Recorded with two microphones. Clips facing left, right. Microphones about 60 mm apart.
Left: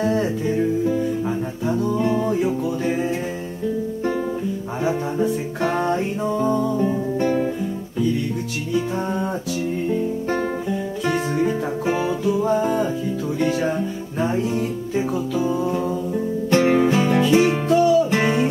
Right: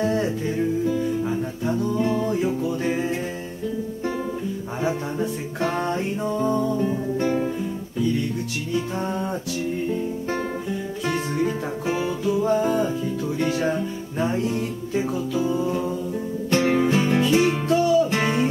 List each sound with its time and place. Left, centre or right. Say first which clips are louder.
0.0 s music: left 2 dB; centre
1.9 s music: left 3 dB; centre
5.6 s music: left 2 dB; centre
6.7 s music: left 2 dB; left
11.1 s music: left 3 dB; centre
16.4 s music: left 3 dB; left